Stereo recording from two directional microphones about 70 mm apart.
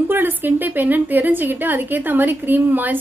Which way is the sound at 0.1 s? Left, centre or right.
Right.